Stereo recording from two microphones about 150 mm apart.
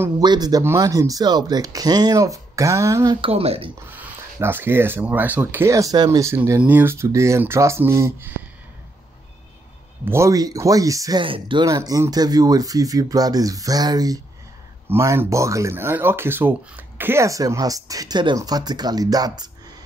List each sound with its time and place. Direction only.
0.2 s speech: 30° right (ahead or behind)
3.2 s speech: 40° right (ahead or behind)
3.9 s speech: 15° right (ahead or behind)
10.0 s speech: 20° right (ahead or behind); by 11.6 s 35° right (ahead or behind)
11.6 s speech: 20° right (ahead or behind)